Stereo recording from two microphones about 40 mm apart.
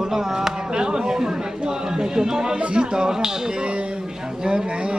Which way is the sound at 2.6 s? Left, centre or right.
Right.